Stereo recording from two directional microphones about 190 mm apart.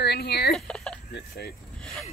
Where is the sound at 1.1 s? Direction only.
55° left (ahead or behind).